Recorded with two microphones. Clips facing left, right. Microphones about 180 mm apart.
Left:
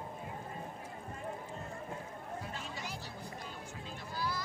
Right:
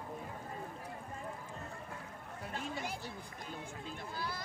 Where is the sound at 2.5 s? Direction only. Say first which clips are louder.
Right 3 dB; 55° right (ahead or behind).